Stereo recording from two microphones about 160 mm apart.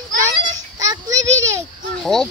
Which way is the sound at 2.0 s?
Centre (ahead or behind).